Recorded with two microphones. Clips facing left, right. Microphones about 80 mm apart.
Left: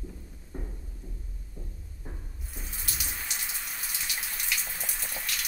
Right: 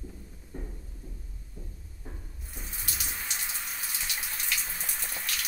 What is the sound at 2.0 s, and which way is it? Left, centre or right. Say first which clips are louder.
Water tap: left 1 dB; centre.